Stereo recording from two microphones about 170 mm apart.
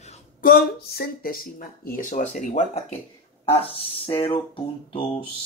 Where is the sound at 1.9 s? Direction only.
45° left (ahead or behind).